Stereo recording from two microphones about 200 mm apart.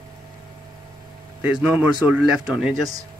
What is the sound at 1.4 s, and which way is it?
Speech, 5° right (ahead or behind).